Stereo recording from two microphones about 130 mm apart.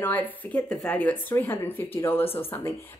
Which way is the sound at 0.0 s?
15° left (ahead or behind).